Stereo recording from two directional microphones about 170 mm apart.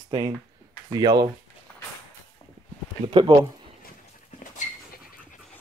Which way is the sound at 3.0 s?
30° right (ahead or behind).